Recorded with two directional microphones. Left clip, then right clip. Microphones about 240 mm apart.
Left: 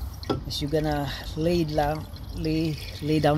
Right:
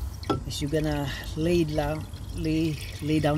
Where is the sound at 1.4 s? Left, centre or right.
Centre.